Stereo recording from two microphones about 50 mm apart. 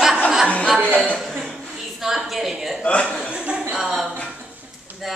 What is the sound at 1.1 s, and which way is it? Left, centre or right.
A woman's voice, centre.